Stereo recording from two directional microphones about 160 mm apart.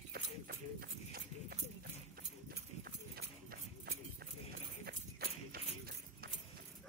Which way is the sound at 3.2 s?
80° right.